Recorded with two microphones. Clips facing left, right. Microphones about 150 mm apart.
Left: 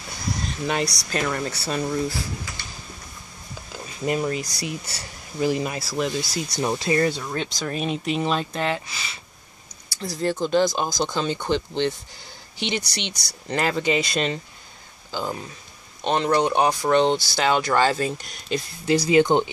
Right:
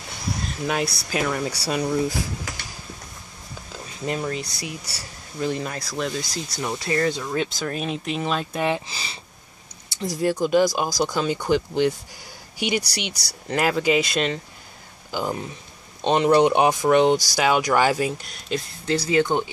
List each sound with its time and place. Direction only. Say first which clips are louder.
0.7 s speech: even; 5° right (ahead or behind)
4.0 s speech: left 3 dB; 10° left (ahead or behind)
4.6 s speech: left 3 dB; 30° right (ahead or behind)
5.4 s speech: left 3 dB; 10° left (ahead or behind)
6.5 s speech: left 3 dB; 20° left (ahead or behind)
7.1 s speech: right 2 dB; centre (ahead or behind)
8.5 s speech: right 2 dB; 15° right (ahead or behind)
8.8 s speech: right 1 dB; 30° right (ahead or behind)
9.8 s speech: right 2 dB; 15° right (ahead or behind); by 14.4 s centre (ahead or behind)
15.0 s speech: right 2 dB; 15° right (ahead or behind)
18.9 s speech: left 3 dB; 15° left (ahead or behind)